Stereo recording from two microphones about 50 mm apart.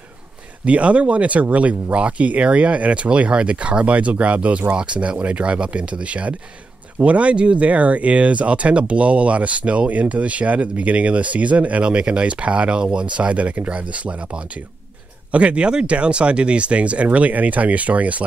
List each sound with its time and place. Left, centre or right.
0.7 s speech: right